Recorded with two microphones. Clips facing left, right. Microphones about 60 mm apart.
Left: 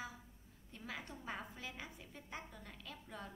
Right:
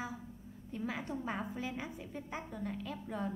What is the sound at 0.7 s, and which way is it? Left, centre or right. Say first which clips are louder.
A woman's voice: right 10 dB; centre.